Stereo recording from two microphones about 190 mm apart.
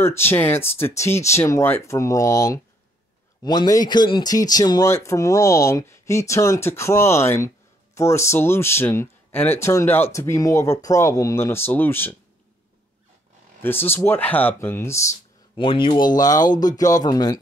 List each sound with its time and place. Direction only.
0.0 s speech: 10° left (ahead or behind)
13.6 s speech: 10° left (ahead or behind)
15.5 s speech: 25° left (ahead or behind)